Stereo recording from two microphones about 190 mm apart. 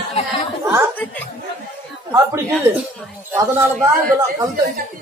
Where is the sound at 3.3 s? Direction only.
10° right (ahead or behind).